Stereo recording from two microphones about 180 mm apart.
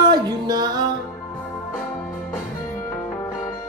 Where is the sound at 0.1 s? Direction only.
25° right (ahead or behind).